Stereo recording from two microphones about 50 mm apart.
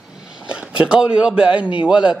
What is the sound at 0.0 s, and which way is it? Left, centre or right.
A man's voice, centre.